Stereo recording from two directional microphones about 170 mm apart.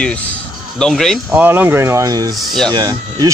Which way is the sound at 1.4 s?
10° right (ahead or behind).